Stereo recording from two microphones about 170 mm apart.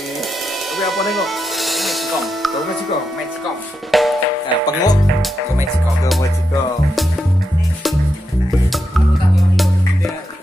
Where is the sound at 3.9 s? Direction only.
Centre (ahead or behind).